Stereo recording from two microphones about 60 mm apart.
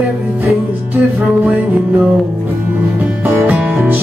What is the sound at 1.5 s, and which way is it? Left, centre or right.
Music, right.